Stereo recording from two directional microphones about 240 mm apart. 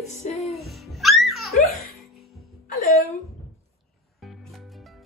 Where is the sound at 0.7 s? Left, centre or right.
Centre.